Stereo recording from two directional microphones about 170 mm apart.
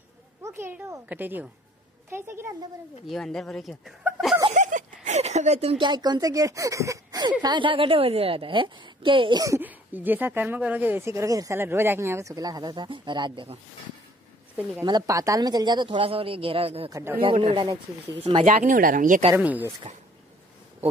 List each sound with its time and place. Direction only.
0.4 s a woman's voice: 15° right (ahead or behind)
3.1 s speech: 5° left (ahead or behind)
4.0 s chuckle: centre (ahead or behind)
4.6 s a woman's voice: 50° right (ahead or behind); by 13.6 s 30° right (ahead or behind)
14.9 s a woman's voice: 20° right (ahead or behind)
16.9 s a woman's voice: 15° right (ahead or behind)
17.2 s speech: 30° right (ahead or behind)
18.4 s speech: 50° right (ahead or behind)
19.3 s a woman's voice: 10° right (ahead or behind)